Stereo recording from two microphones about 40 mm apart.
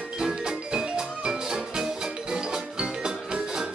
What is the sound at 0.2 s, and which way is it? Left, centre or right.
Music, centre.